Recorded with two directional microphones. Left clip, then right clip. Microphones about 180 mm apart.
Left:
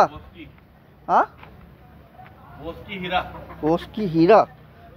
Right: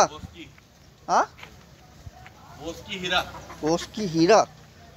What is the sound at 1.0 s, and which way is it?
Speech, centre (ahead or behind).